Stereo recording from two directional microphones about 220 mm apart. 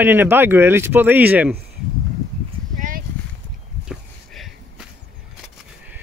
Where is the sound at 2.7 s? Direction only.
40° right (ahead or behind).